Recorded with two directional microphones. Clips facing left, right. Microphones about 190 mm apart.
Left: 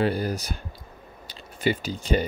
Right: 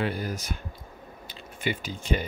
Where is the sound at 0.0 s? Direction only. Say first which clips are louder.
Left 5 dB; 35° left (ahead or behind).